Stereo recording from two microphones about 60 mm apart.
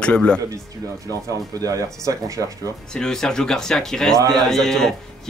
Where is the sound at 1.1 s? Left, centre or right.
Right.